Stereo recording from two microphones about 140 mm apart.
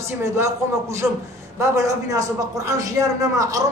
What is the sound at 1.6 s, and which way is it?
A man's voice, 25° right (ahead or behind).